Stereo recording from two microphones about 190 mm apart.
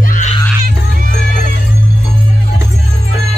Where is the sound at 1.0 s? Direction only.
45° right (ahead or behind).